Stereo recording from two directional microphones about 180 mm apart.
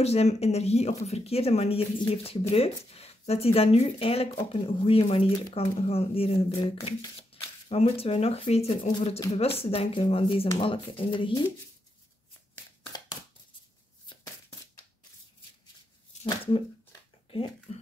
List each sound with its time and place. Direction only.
0.0 s speech: 35° left (ahead or behind)
17.3 s speech: 30° left (ahead or behind)